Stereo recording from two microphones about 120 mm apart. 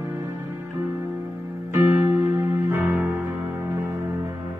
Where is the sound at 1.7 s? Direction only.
20° right (ahead or behind).